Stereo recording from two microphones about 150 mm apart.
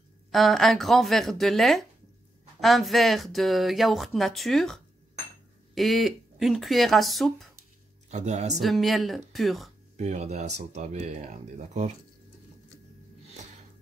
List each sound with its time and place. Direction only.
0.3 s speech: centre (ahead or behind)
8.1 s speech: 50° right (ahead or behind)
8.5 s speech: centre (ahead or behind)
9.9 s speech: 50° right (ahead or behind)